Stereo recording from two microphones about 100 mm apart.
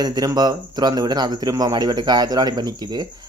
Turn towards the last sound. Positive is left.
turn(degrees=-45)  # may be behind; listen again after turning